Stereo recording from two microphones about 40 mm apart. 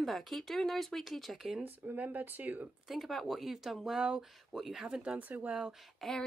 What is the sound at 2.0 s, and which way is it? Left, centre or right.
Speech, right.